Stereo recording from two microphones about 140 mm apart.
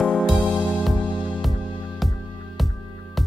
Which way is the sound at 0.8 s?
10° right (ahead or behind).